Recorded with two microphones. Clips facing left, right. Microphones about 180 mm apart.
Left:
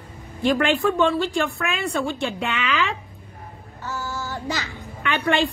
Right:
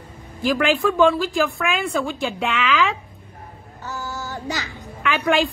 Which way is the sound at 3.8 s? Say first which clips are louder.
Left 1 dB; 15° right (ahead or behind).